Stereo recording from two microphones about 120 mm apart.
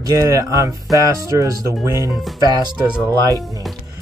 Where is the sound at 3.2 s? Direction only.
30° right (ahead or behind).